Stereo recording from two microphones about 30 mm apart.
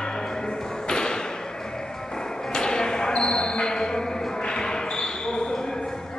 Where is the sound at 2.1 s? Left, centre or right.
Left.